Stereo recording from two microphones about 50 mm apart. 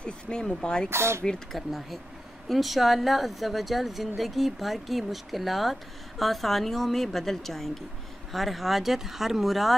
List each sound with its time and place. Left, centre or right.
0.0 s speech: centre
0.8 s speech: right
1.5 s speech: centre